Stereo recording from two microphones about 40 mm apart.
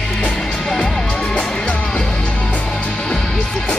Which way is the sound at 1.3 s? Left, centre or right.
Left.